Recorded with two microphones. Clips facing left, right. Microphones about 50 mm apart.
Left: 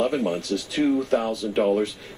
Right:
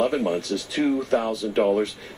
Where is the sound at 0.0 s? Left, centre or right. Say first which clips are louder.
Right 1 dB; centre.